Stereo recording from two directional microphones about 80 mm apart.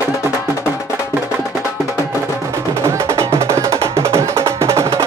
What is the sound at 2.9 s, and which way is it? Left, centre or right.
Music, right.